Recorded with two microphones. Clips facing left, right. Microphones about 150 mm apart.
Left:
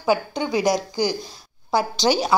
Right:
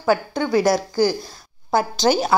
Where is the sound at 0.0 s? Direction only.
15° left (ahead or behind).